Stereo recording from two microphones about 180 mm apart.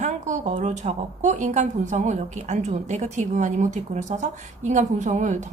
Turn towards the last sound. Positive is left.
turn(degrees=-40)  # may be behind; listen again after turning